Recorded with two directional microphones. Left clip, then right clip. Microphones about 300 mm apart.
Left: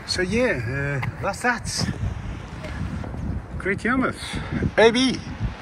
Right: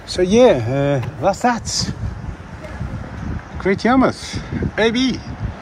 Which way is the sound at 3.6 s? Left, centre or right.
Centre.